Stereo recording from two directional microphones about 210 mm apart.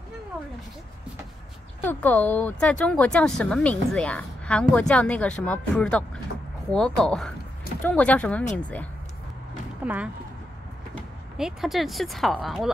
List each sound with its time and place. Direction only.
1.8 s speech: 10° left (ahead or behind)
9.8 s speech: 10° right (ahead or behind)
11.3 s speech: centre (ahead or behind)